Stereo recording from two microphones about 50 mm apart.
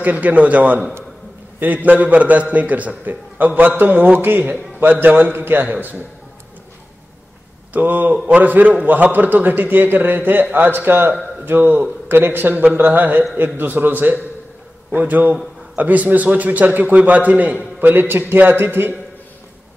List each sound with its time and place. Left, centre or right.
0.0 s a man's voice: right
7.7 s a man's voice: right